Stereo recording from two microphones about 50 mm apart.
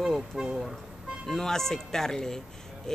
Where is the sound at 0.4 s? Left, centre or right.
Centre.